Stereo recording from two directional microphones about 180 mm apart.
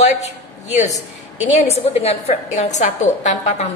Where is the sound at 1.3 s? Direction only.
40° left (ahead or behind).